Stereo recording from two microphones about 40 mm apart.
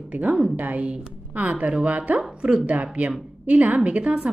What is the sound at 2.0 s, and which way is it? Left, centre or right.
Speech, right.